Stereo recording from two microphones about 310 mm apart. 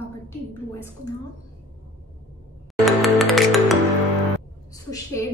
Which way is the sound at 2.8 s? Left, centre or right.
Centre.